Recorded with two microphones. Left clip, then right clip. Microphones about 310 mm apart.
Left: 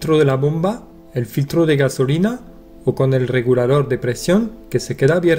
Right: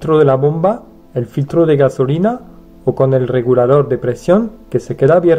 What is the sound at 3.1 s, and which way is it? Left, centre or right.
Speech, left.